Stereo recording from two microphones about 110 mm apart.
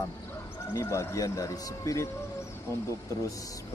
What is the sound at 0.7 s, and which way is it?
Speech, 25° left (ahead or behind).